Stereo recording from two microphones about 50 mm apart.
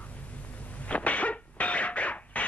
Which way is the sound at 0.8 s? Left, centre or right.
Left.